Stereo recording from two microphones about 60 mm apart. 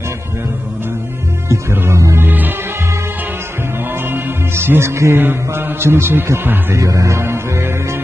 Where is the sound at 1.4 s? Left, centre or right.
Right.